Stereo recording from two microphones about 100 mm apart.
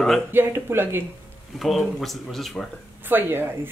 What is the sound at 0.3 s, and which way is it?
Speech, 25° right (ahead or behind).